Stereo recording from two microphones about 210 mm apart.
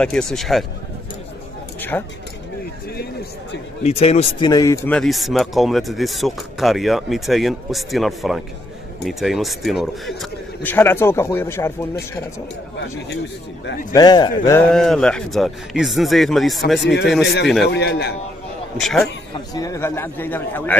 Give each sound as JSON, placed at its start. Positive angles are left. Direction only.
{"t": 0.0, "sound": "speech", "side_deg": 5}
{"t": 1.8, "sound": "a man's voice", "side_deg": 10}
{"t": 3.8, "sound": "a man's voice", "side_deg": 30}
{"t": 13.9, "sound": "a man's voice", "side_deg": 20}
{"t": 14.7, "sound": "speech", "side_deg": 0}
{"t": 16.8, "sound": "a man's voice", "side_deg": 55}
{"t": 18.8, "sound": "speech", "side_deg": 0}
{"t": 19.5, "sound": "a man's voice", "side_deg": 15}